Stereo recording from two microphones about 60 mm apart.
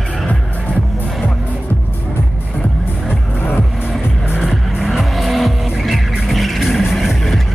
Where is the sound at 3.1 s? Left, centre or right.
Left.